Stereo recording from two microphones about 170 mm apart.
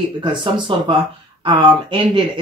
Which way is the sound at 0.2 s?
25° right (ahead or behind).